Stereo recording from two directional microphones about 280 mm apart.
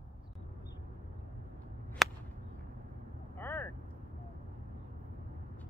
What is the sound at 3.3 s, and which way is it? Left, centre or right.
Vehicle, centre.